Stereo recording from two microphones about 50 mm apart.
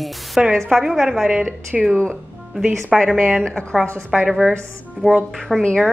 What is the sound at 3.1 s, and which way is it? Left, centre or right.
Speech, centre.